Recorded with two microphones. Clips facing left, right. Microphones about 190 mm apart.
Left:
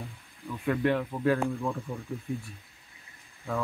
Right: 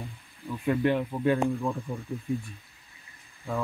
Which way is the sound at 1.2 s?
25° right (ahead or behind).